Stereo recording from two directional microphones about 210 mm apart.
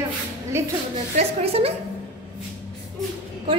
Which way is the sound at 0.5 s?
10° right (ahead or behind).